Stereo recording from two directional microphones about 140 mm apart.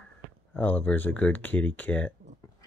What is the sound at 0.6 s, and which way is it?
Speech, 15° left (ahead or behind).